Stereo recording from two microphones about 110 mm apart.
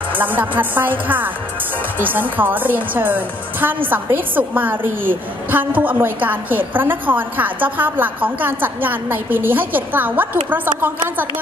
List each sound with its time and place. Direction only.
0.1 s a woman's voice: 15° right (ahead or behind)